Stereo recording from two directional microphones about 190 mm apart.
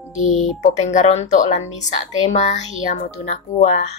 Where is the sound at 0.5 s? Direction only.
40° left (ahead or behind).